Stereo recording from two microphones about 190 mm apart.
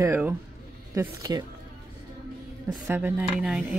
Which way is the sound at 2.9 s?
10° right (ahead or behind).